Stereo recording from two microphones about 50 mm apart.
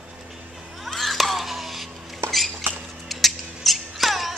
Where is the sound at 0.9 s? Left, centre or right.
Centre.